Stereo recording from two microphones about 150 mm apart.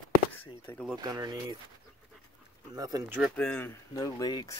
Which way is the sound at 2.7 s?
25° right (ahead or behind).